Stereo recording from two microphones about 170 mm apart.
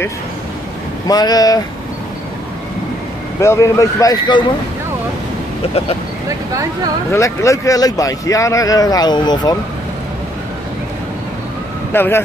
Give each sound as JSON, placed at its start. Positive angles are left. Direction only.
{"t": 1.0, "sound": "speech", "side_deg": 25}
{"t": 3.3, "sound": "speech", "side_deg": 20}
{"t": 7.1, "sound": "speech", "side_deg": 20}
{"t": 11.9, "sound": "speech", "side_deg": 10}